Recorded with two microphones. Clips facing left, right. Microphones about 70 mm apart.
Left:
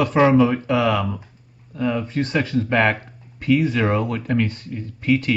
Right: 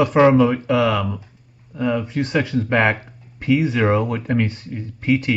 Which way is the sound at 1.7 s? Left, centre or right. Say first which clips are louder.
Right 1 dB; centre.